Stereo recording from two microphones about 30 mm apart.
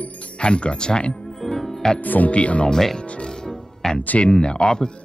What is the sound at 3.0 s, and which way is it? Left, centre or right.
Speech, left.